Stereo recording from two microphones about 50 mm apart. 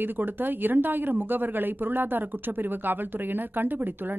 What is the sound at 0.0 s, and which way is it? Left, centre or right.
Speech, right.